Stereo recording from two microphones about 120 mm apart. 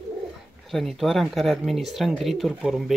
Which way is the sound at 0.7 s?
Centre (ahead or behind).